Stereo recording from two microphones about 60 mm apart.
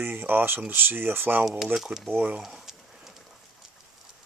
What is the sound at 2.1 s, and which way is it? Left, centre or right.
Speech, right.